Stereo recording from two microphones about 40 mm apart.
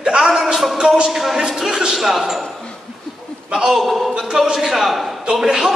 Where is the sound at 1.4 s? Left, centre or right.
Centre.